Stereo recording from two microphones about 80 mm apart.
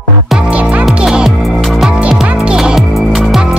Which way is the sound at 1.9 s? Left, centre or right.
Centre.